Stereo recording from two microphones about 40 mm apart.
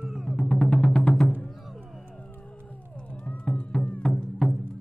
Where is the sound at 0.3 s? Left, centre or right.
Left.